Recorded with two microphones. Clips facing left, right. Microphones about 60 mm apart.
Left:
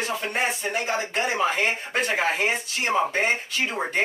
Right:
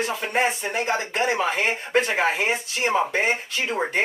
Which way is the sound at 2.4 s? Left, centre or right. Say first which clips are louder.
Right 1 dB; centre.